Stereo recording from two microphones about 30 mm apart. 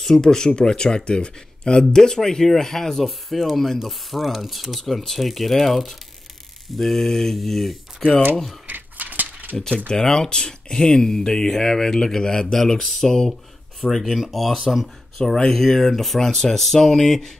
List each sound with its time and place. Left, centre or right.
0.1 s speech: centre
1.8 s speech: centre
3.1 s speech: centre
6.8 s speech: centre
8.6 s keys jangling: right
9.8 s speech: left
13.3 s a sound: centre
14.3 s speech: centre
16.3 s speech: centre